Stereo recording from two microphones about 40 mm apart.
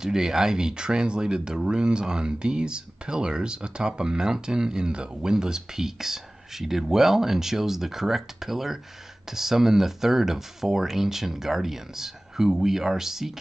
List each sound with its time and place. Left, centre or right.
0.0 s speech: centre